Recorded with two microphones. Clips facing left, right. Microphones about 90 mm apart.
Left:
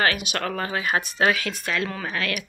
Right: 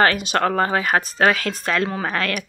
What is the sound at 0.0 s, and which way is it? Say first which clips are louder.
Speech: right 6 dB; 35° right (ahead or behind).